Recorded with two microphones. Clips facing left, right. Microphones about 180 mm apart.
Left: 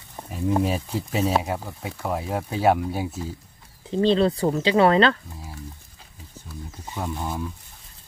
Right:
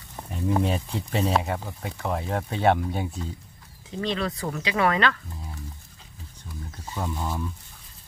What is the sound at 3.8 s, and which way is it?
Speech, 30° left (ahead or behind).